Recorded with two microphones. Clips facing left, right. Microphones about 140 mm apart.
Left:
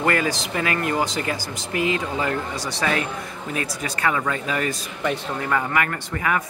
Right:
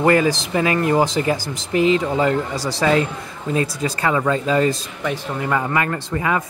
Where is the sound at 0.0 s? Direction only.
25° right (ahead or behind).